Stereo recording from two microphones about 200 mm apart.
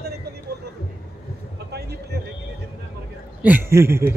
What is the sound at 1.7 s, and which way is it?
Speech, 55° right (ahead or behind).